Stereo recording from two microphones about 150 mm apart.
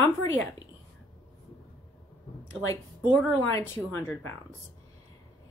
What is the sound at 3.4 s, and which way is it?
Speech, 15° left (ahead or behind).